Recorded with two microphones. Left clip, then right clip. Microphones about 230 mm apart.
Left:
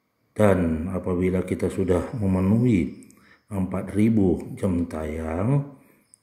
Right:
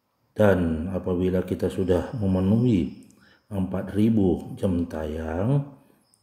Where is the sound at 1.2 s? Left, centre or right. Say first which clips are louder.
Left 1 dB; centre.